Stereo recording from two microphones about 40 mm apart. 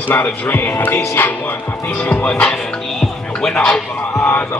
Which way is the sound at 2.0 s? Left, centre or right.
Left.